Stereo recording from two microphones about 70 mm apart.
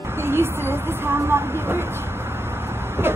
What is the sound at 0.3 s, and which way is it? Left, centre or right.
Speech, right.